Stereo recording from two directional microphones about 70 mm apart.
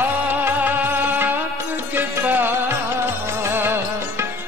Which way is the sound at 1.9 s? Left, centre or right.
Right.